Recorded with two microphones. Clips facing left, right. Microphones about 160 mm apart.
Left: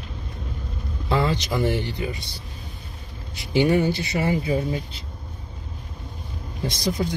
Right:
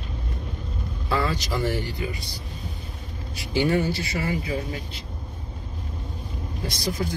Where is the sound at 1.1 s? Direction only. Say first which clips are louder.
Left 3 dB; 20° left (ahead or behind).